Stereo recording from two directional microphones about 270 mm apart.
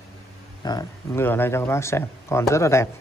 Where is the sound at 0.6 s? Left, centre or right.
Centre.